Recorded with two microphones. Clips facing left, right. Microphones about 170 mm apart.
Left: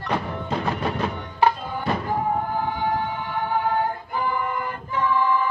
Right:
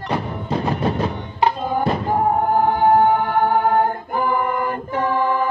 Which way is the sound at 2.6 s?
50° right (ahead or behind).